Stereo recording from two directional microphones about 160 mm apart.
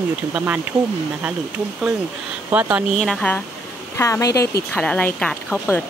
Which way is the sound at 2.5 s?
10° right (ahead or behind).